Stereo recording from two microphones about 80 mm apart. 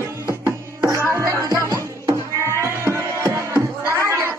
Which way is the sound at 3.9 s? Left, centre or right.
Right.